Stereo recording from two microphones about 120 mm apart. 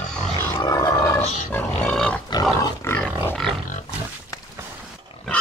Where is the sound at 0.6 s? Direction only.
30° left (ahead or behind).